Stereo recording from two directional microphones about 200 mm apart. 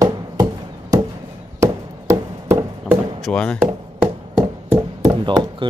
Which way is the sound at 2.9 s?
Centre (ahead or behind).